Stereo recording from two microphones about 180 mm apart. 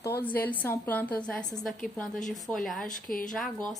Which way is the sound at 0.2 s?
10° left (ahead or behind).